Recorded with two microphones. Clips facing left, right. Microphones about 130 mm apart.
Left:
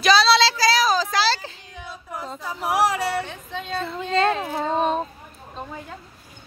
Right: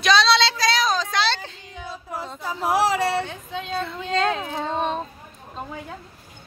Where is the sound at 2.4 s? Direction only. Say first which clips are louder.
Right 5 dB; 25° right (ahead or behind).